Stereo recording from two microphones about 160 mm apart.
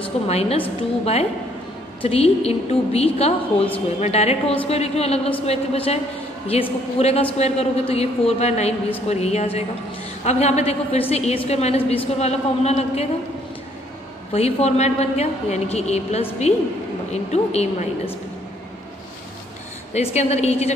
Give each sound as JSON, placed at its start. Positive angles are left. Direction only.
{"t": 0.3, "sound": "a woman's voice", "side_deg": 40}
{"t": 14.3, "sound": "a woman's voice", "side_deg": 40}
{"t": 19.9, "sound": "a woman's voice", "side_deg": 40}